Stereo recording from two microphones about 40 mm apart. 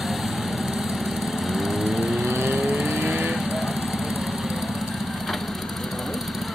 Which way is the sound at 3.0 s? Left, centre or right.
Right.